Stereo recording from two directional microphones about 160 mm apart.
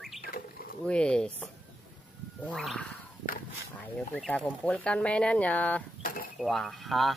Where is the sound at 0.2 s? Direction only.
65° left (ahead or behind).